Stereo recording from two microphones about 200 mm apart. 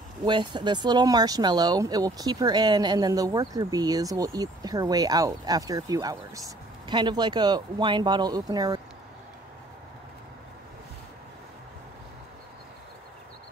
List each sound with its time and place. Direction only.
0.2 s speech: 25° right (ahead or behind)